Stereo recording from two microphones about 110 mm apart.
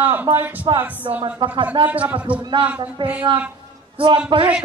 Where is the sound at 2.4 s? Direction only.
45° right (ahead or behind).